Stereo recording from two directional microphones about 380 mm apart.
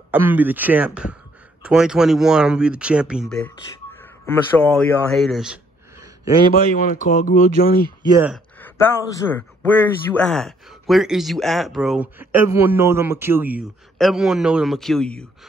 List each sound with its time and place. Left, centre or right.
0.1 s a man's voice: centre
6.5 s speech: left
8.0 s speech: centre
8.5 s a man's voice: centre